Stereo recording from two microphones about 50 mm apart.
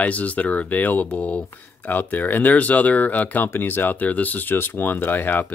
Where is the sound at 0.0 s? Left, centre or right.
Left.